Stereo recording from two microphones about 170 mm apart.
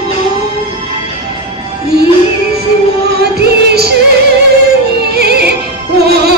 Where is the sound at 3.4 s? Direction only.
70° right (ahead or behind).